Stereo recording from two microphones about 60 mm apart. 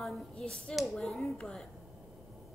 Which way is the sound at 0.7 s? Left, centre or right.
Centre.